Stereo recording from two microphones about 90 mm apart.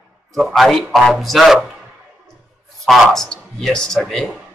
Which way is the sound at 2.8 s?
5° left (ahead or behind).